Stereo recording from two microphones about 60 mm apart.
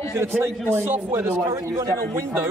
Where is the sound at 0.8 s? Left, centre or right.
Right.